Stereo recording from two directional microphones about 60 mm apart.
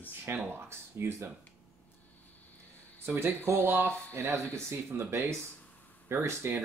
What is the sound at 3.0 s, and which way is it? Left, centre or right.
Speech, right.